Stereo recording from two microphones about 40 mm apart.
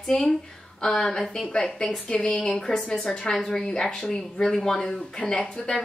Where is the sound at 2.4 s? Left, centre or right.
Centre.